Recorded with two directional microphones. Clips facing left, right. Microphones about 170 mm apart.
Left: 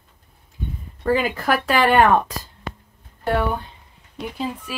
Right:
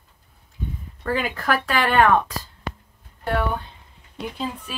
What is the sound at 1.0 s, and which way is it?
Speech, 10° left (ahead or behind).